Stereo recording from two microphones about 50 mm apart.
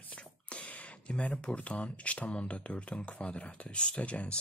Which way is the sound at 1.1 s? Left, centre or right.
Left.